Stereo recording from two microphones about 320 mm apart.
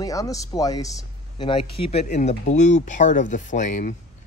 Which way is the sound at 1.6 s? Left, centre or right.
Left.